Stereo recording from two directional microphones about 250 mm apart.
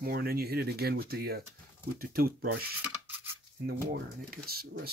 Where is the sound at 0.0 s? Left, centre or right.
Right.